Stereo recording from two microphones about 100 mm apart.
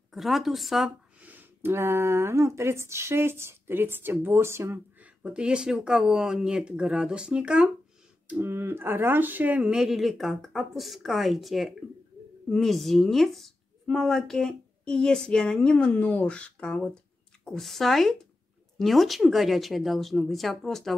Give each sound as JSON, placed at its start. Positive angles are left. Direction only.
{"t": 0.1, "sound": "speech", "side_deg": 0}
{"t": 1.2, "sound": "speech", "side_deg": -20}
{"t": 5.0, "sound": "speech", "side_deg": -10}
{"t": 8.3, "sound": "a woman's voice", "side_deg": -25}